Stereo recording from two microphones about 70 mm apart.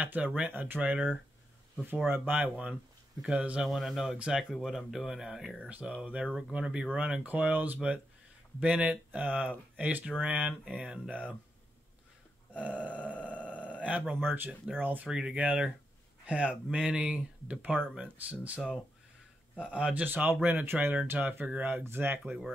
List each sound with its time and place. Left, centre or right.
0.0 s speech: centre
0.6 s speech: right
2.5 s speech: centre
3.6 s speech: centre
6.3 s speech: centre
11.1 s speech: right
12.5 s speech: centre
13.7 s a sound: centre
14.2 s speech: right
15.0 s speech: centre
19.6 s speech: centre; by 22.3 s right